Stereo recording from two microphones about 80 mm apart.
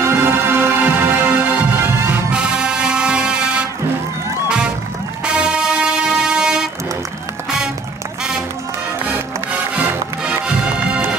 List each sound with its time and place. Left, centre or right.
0.0 s music: right
2.3 s music: centre
5.2 s vehicle: centre